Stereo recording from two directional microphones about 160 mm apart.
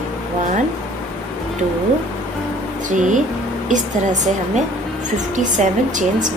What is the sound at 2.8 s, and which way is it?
A woman's voice, 50° right (ahead or behind).